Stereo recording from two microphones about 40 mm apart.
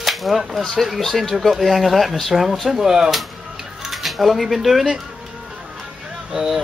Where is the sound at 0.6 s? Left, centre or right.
Centre.